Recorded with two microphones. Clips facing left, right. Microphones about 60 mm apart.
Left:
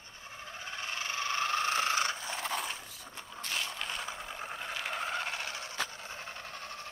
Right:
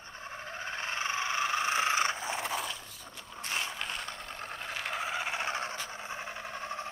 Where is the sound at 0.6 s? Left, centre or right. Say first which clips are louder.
Right 4 dB; right.